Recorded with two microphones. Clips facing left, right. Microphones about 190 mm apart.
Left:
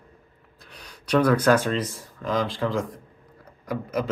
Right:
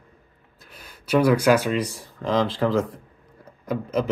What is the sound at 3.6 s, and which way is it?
Speech, 20° right (ahead or behind).